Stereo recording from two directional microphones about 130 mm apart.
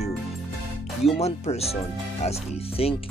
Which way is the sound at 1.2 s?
55° left (ahead or behind).